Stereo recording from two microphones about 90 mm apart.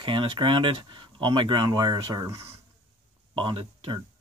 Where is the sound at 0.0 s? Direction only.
70° right (ahead or behind); by 2.4 s 40° right (ahead or behind).